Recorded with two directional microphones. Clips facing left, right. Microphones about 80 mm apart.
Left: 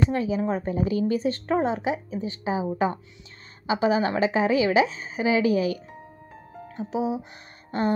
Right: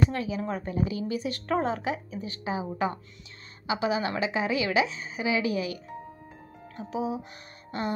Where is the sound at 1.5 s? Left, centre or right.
Centre; by 5.8 s left.